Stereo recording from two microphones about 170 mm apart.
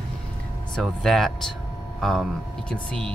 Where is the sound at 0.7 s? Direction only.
Centre (ahead or behind).